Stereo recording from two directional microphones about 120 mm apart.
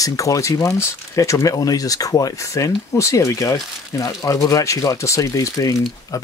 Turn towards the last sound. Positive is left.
turn(degrees=30)  # may be behind; listen again after turning